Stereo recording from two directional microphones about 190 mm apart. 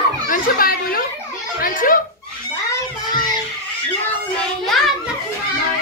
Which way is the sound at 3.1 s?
20° left (ahead or behind).